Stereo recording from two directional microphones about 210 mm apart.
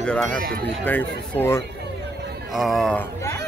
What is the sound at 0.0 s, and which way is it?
Speech, 5° left (ahead or behind).